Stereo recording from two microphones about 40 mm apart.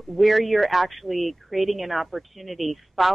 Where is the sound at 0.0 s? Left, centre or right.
Centre.